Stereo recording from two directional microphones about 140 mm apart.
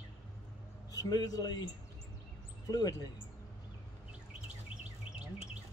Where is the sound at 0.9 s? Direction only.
25° left (ahead or behind).